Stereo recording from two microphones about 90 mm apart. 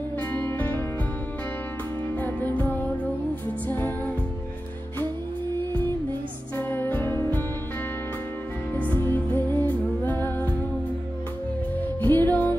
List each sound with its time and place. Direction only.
0.3 s music: 20° left (ahead or behind)
2.1 s music: 20° left (ahead or behind)
6.5 s music: 25° left (ahead or behind)
8.7 s music: 20° left (ahead or behind)
12.0 s music: 20° left (ahead or behind)